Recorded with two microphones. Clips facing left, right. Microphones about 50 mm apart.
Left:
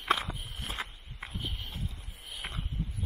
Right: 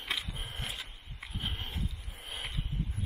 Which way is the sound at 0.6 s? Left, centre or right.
Left.